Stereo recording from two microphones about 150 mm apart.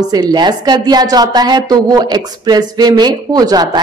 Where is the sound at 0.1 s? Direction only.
30° right (ahead or behind).